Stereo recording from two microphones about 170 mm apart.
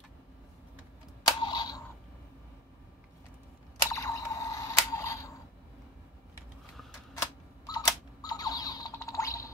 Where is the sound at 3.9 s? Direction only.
20° left (ahead or behind).